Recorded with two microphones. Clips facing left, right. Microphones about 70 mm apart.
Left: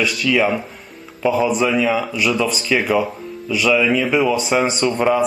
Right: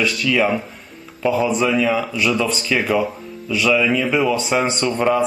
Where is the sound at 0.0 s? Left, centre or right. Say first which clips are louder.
Left 1 dB; centre.